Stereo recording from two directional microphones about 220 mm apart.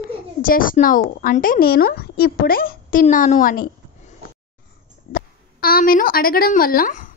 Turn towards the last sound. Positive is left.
turn(degrees=40)  # may be behind; listen again after turning